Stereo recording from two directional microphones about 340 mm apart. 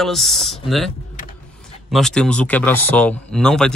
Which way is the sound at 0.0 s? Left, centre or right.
Centre.